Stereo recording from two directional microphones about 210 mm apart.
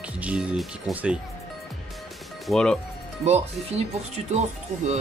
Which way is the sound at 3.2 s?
30° right (ahead or behind).